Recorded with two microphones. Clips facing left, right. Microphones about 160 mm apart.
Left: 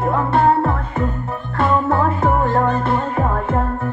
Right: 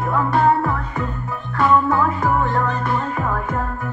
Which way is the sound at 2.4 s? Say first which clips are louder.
Left 3 dB; 30° left (ahead or behind).